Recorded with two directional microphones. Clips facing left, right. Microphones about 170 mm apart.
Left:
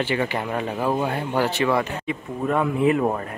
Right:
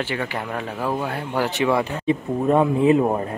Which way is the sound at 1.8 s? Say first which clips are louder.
Right 5 dB; 30° right (ahead or behind).